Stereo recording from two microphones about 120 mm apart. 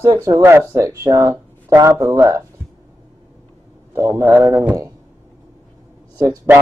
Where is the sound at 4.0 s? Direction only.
25° right (ahead or behind).